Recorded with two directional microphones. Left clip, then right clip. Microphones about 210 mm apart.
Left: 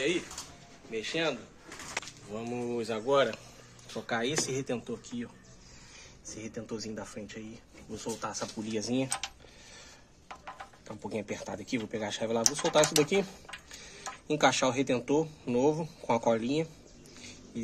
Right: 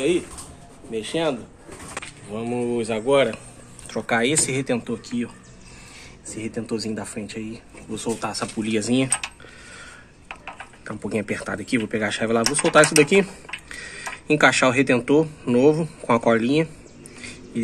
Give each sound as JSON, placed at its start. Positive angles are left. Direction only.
{"t": 0.9, "sound": "speech", "side_deg": -25}
{"t": 2.2, "sound": "speech", "side_deg": 0}
{"t": 6.3, "sound": "speech", "side_deg": -5}
{"t": 10.9, "sound": "speech", "side_deg": -5}